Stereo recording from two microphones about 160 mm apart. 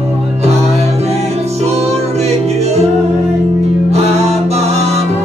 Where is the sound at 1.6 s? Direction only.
40° right (ahead or behind).